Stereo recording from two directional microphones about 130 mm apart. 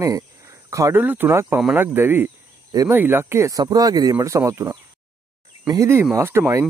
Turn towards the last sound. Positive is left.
turn(degrees=-20)  # may be behind; listen again after turning